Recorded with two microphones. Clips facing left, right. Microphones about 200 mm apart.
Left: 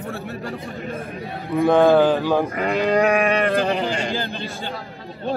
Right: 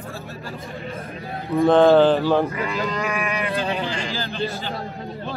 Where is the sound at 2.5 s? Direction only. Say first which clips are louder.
Left 6 dB; 55° left (ahead or behind).